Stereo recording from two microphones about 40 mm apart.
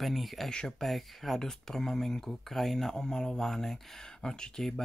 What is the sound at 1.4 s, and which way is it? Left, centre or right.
Speech, centre.